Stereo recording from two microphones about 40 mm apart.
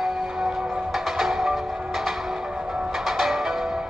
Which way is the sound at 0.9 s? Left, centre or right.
Centre.